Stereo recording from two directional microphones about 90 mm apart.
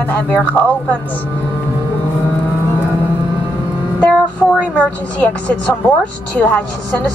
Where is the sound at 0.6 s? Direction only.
20° left (ahead or behind).